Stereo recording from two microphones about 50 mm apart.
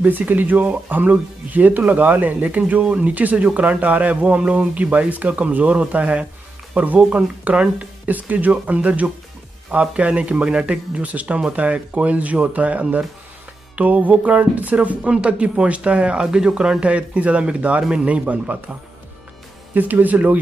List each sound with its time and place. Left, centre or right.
0.0 s speech: right
19.7 s speech: right